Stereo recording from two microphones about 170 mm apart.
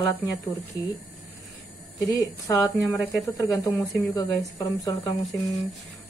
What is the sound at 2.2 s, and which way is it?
Speech, 20° left (ahead or behind).